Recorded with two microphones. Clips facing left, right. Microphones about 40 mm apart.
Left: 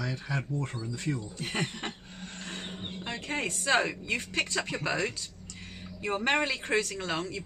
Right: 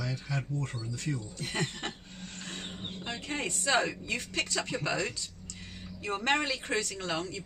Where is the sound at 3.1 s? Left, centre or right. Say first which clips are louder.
Left 3 dB; left.